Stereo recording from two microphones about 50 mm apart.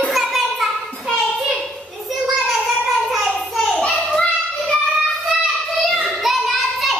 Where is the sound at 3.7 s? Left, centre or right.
Centre.